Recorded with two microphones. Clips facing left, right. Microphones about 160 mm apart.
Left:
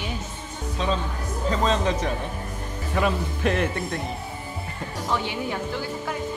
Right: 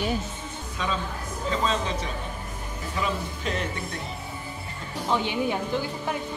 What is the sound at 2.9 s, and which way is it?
Speech, 60° left (ahead or behind).